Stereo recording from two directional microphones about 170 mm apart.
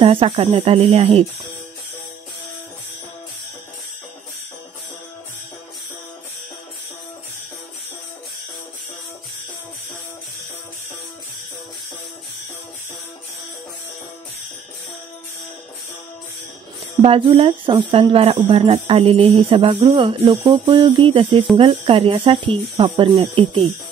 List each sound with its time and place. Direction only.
0.0 s speech: 30° right (ahead or behind)
17.0 s speech: 35° right (ahead or behind)
19.8 s speech: 20° right (ahead or behind); by 23.7 s 35° right (ahead or behind)